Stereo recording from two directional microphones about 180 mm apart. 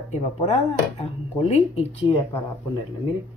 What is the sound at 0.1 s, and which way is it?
Speech, 35° left (ahead or behind).